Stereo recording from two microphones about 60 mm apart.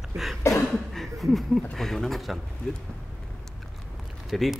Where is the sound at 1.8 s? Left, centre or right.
Centre.